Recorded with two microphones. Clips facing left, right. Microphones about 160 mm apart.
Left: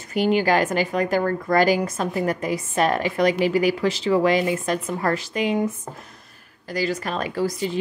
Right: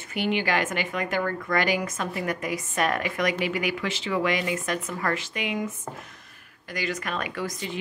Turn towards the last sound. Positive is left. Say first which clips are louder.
# left 8 dB
turn(degrees=35)  # may be behind; listen again after turning